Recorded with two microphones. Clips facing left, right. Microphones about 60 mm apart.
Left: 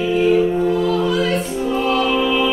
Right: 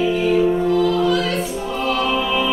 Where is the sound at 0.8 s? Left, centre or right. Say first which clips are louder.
Right 1 dB; centre.